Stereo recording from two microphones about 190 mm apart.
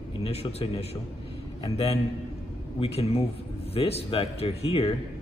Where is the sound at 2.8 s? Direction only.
30° left (ahead or behind).